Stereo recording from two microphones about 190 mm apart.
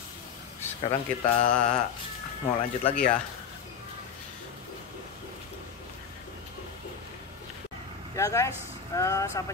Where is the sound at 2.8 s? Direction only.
5° left (ahead or behind).